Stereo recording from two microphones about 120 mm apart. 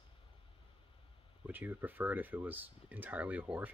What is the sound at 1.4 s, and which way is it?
Speech, 15° right (ahead or behind).